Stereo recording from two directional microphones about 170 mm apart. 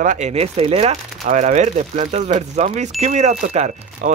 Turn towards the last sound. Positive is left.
turn(degrees=-45)  # may be behind; listen again after turning